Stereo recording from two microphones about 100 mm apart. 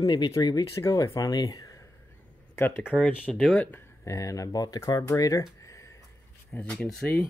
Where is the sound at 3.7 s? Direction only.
25° left (ahead or behind).